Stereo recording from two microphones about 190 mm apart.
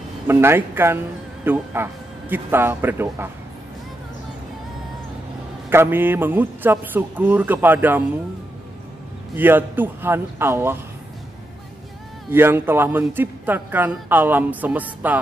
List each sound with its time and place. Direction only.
0.3 s a man's voice: 10° right (ahead or behind)
5.7 s a man's voice: 10° right (ahead or behind)
9.3 s a man's voice: 10° right (ahead or behind)
12.3 s a man's voice: 10° right (ahead or behind)